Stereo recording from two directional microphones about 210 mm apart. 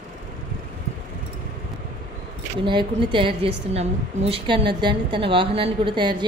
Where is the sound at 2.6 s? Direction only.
20° right (ahead or behind).